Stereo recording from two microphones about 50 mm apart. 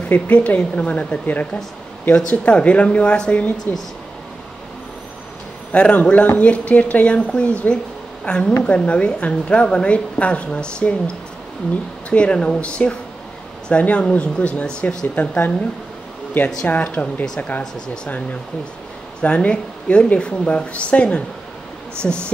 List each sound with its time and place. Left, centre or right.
0.0 s a woman's voice: left
3.7 s speech: left
5.7 s a woman's voice: left
8.3 s a woman's voice: centre
12.1 s a woman's voice: left
16.6 s speech: left
19.2 s a woman's voice: left